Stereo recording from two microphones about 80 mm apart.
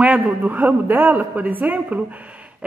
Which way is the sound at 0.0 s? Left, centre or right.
Centre.